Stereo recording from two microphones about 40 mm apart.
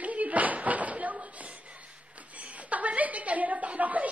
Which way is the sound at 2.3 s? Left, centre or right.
Right.